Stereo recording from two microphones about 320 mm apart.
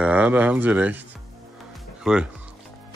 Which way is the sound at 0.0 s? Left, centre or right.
Centre.